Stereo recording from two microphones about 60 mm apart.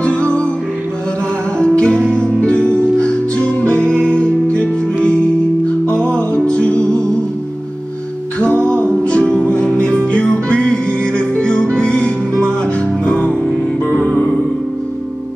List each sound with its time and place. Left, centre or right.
0.0 s music: centre
1.6 s music: centre
5.9 s music: centre
8.4 s music: left